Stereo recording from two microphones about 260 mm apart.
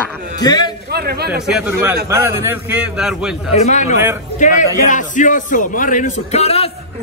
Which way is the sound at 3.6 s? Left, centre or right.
Left.